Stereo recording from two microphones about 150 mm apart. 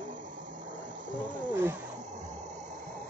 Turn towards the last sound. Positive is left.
turn(degrees=-15)  # may be behind; listen again after turning